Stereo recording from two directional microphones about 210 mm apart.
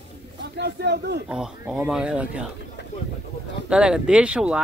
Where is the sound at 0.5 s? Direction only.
50° right (ahead or behind).